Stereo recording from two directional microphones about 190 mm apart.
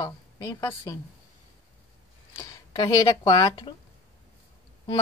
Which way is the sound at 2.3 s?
20° left (ahead or behind).